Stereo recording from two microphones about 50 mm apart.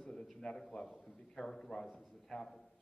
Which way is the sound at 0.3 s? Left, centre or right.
Centre.